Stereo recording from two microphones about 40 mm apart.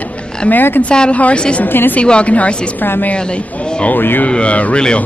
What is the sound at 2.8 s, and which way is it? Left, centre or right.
A woman's voice, left.